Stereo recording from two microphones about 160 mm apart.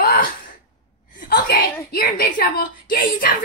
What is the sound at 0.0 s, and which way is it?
Sigh, 65° left (ahead or behind).